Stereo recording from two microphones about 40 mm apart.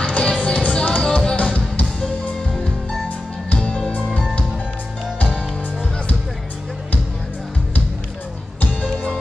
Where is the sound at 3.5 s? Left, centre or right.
Left.